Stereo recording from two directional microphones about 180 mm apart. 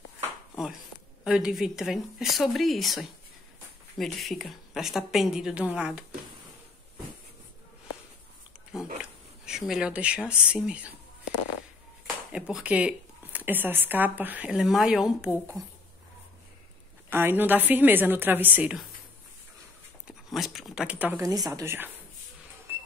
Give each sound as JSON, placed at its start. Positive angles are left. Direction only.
{"t": 1.2, "sound": "a woman's voice", "side_deg": -5}
{"t": 9.5, "sound": "a woman's voice", "side_deg": -5}
{"t": 12.3, "sound": "speech", "side_deg": -5}
{"t": 15.6, "sound": "speech", "side_deg": -20}
{"t": 17.1, "sound": "speech", "side_deg": -10}
{"t": 20.1, "sound": "a sound", "side_deg": 0}
{"t": 21.2, "sound": "speech", "side_deg": -20}
{"t": 22.7, "sound": "a sound", "side_deg": -15}